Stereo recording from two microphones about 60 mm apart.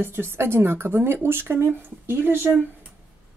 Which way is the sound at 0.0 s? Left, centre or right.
Right.